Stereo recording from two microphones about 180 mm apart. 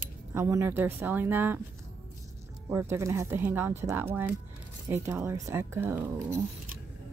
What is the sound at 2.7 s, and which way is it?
A woman's voice, 15° right (ahead or behind).